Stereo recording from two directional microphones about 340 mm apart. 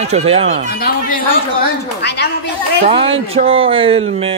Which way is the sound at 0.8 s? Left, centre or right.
Left.